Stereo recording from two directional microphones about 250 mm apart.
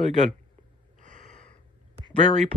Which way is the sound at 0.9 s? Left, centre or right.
Right.